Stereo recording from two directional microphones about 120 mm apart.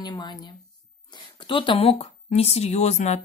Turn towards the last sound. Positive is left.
turn(degrees=65)  # may be behind; listen again after turning